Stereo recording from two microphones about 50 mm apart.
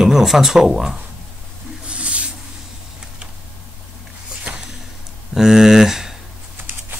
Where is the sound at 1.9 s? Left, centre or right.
Right.